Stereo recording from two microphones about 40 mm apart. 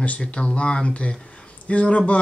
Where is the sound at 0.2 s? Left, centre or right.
Left.